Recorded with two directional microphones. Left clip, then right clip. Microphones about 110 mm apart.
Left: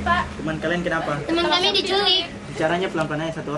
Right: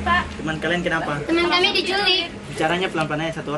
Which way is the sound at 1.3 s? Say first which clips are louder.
Right 1 dB; 10° left (ahead or behind).